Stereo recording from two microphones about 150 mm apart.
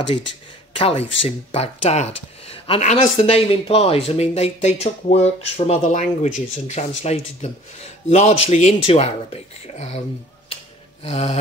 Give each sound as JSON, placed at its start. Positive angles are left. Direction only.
{"t": 0.7, "sound": "speech", "side_deg": 40}
{"t": 11.1, "sound": "speech", "side_deg": 45}